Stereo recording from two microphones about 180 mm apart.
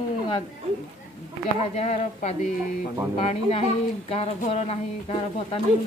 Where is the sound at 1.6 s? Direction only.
35° left (ahead or behind).